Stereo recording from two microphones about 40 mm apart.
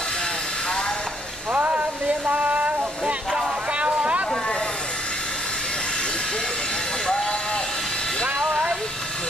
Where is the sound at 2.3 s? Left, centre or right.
Right.